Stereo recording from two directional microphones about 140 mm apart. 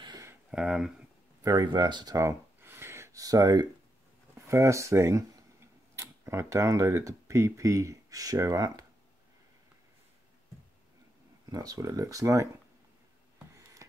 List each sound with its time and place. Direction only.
0.0 s a sound: 30° right (ahead or behind)
0.5 s speech: 5° right (ahead or behind)
1.4 s speech: 25° right (ahead or behind)
11.5 s speech: 25° right (ahead or behind)